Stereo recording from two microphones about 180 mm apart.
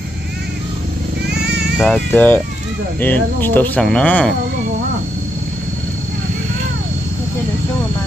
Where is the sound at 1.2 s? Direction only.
70° right (ahead or behind).